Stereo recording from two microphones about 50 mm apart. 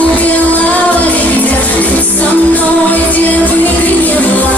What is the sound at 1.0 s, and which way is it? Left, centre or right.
Music, left.